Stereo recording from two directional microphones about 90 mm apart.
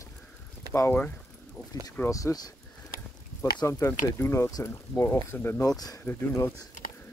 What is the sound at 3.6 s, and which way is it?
Speech, 30° left (ahead or behind).